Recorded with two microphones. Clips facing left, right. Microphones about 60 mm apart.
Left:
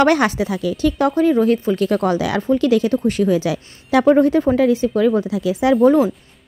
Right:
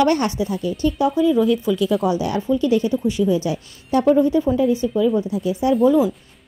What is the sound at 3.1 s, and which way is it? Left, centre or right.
Speech, left.